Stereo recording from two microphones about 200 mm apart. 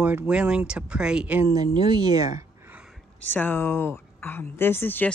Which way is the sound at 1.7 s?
20° right (ahead or behind).